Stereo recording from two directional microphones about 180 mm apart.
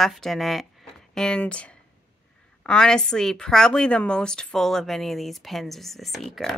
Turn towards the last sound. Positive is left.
turn(degrees=0)  # may be behind; listen again after turning